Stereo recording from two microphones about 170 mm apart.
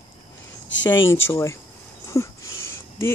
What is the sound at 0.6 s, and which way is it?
Speech, 90° left.